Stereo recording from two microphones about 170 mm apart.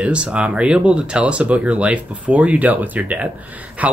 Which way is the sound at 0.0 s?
5° right (ahead or behind).